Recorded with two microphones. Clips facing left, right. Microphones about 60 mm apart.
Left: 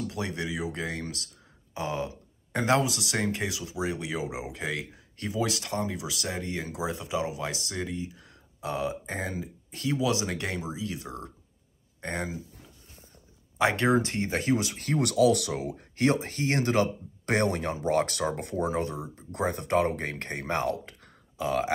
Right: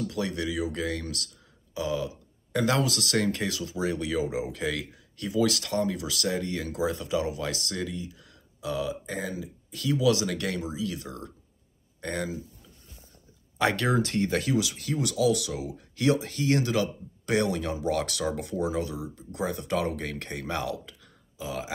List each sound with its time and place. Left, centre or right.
0.0 s speech: left
13.6 s speech: left